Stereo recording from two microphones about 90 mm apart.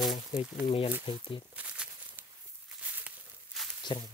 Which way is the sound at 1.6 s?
15° right (ahead or behind).